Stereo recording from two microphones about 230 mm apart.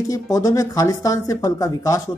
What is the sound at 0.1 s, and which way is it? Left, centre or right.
Speech, centre.